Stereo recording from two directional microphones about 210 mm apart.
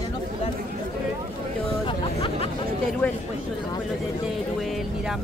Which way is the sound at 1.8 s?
25° left (ahead or behind).